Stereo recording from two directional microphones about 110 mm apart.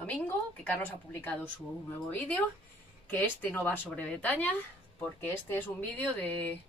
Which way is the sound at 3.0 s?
15° left (ahead or behind).